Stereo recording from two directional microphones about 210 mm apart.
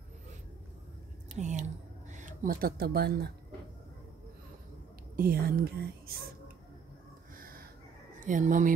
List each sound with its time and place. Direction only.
1.3 s speech: 35° right (ahead or behind)
5.1 s a woman's voice: 45° right (ahead or behind)
7.3 s a sound: 45° right (ahead or behind)
8.2 s speech: 40° right (ahead or behind)